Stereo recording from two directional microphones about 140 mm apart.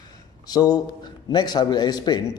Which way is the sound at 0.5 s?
25° left (ahead or behind).